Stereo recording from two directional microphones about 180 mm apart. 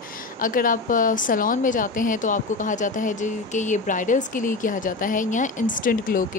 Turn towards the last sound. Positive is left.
turn(degrees=50)  # may be behind; listen again after turning